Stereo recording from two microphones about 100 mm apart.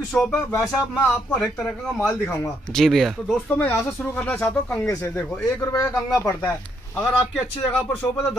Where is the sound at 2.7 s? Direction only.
5° left (ahead or behind).